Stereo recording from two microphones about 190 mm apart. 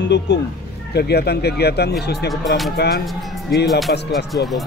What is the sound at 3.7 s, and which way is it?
Speech, centre (ahead or behind).